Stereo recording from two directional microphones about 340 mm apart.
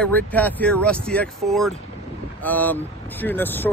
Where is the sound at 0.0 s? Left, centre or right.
Centre.